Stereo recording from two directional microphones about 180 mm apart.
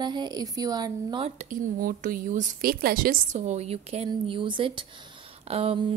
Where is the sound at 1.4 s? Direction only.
45° right (ahead or behind); by 5.9 s 30° right (ahead or behind).